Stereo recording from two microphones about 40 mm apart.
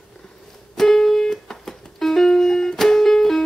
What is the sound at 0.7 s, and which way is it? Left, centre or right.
Music, centre.